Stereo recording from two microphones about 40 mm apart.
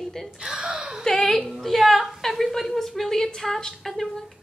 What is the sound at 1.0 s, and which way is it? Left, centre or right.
A woman's voice, centre.